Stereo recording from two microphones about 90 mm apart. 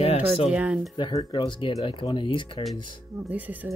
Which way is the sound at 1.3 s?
60° left (ahead or behind).